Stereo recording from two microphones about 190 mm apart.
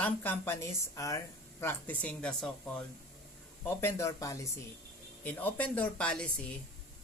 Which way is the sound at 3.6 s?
15° left (ahead or behind).